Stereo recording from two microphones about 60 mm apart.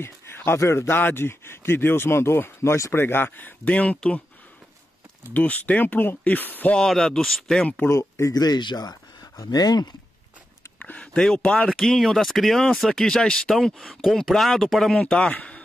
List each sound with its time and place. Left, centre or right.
0.0 s a man's voice: left
5.3 s speech: left
6.8 s speech: centre
7.9 s speech: left
8.4 s speech: left
10.8 s speech: left
11.7 s speech: centre
15.0 s speech: centre
15.3 s a sound: left